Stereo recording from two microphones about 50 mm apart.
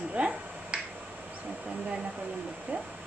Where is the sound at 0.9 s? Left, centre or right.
Right.